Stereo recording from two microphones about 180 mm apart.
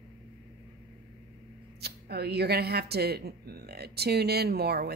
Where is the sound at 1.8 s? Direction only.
65° right (ahead or behind).